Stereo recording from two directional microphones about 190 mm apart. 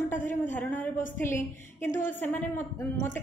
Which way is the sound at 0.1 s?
40° left (ahead or behind).